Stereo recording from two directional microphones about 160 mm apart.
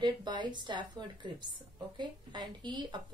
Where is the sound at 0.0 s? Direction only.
25° right (ahead or behind).